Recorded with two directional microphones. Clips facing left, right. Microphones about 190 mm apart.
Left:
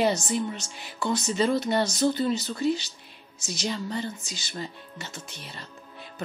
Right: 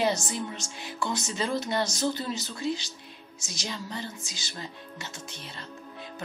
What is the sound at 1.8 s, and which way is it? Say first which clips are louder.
Speech: left 6 dB; 60° left (ahead or behind).